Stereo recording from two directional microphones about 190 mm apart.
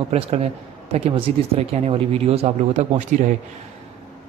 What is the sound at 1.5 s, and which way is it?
Speech, 30° right (ahead or behind).